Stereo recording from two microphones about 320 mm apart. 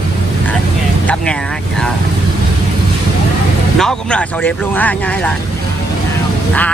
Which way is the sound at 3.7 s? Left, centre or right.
Centre.